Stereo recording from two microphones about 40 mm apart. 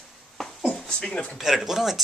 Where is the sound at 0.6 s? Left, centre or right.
Left.